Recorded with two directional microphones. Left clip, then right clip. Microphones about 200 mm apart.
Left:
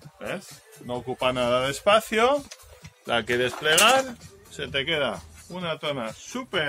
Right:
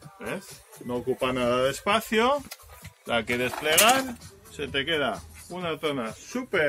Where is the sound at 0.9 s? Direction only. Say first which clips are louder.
Left 1 dB; 40° left (ahead or behind).